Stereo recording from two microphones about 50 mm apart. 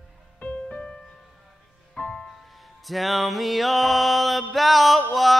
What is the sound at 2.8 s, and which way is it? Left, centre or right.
Music, centre.